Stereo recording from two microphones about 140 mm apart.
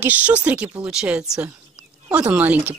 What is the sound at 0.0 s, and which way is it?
Speech, 10° right (ahead or behind).